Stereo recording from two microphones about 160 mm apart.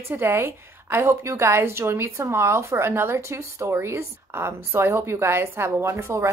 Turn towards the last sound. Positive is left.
turn(degrees=-15)  # may be behind; listen again after turning